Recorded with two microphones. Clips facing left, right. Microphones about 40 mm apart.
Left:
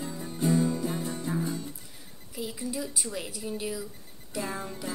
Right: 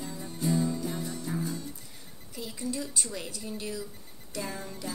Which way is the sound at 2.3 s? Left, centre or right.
Centre.